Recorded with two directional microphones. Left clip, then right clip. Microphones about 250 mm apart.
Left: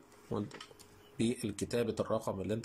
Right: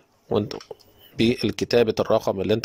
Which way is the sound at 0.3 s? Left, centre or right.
Right.